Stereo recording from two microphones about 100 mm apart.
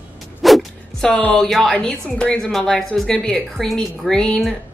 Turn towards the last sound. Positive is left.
turn(degrees=10)  # may be behind; listen again after turning